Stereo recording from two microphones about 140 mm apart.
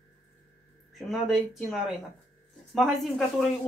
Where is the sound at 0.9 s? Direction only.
Centre (ahead or behind).